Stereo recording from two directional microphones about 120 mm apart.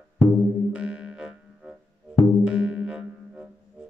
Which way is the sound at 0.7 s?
10° right (ahead or behind).